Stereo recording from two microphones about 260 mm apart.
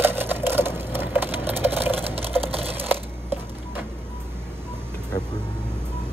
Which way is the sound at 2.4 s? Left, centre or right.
Right.